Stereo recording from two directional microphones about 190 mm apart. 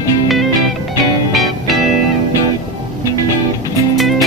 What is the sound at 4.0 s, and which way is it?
Music, centre (ahead or behind).